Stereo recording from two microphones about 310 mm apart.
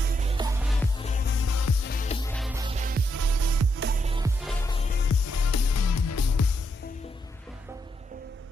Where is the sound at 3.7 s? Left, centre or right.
Right.